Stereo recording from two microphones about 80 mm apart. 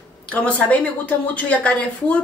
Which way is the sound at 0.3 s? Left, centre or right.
Centre.